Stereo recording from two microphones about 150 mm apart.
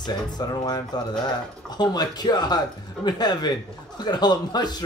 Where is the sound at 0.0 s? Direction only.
30° left (ahead or behind).